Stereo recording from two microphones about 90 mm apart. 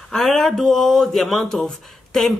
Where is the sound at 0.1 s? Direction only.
5° left (ahead or behind).